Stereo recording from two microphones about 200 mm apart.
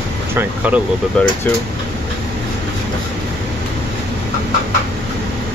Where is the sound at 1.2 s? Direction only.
5° left (ahead or behind).